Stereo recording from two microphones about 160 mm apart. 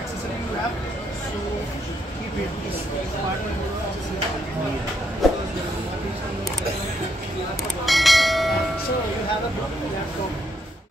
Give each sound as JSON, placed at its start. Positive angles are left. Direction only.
{"t": 5.2, "sound": "music", "side_deg": 0}
{"t": 7.8, "sound": "bell", "side_deg": 0}